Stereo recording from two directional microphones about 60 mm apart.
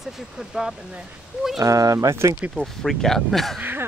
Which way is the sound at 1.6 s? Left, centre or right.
Right.